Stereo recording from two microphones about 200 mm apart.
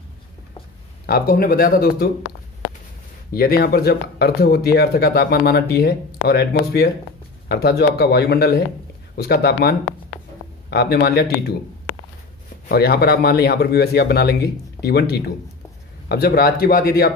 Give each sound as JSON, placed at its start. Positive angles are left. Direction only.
{"t": 1.0, "sound": "speech", "side_deg": 45}
{"t": 3.3, "sound": "speech", "side_deg": 50}
{"t": 12.6, "sound": "speech", "side_deg": 50}